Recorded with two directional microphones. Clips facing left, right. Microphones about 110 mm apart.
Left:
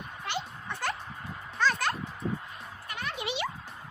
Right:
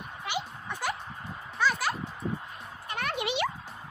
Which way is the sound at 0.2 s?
10° right (ahead or behind).